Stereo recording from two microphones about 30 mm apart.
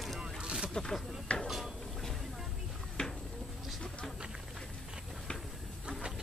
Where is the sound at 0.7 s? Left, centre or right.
Centre.